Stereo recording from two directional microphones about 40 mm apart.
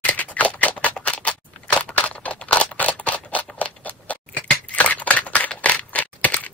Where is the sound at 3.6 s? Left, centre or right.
Left.